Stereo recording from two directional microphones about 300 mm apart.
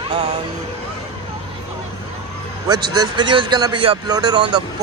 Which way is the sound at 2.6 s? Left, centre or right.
Centre.